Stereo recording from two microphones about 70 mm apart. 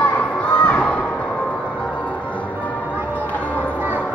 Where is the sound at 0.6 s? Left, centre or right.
Centre.